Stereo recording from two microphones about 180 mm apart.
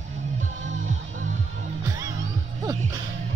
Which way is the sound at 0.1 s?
40° right (ahead or behind).